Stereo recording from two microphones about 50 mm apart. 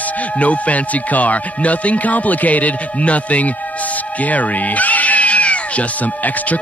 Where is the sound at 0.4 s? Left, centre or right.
Left.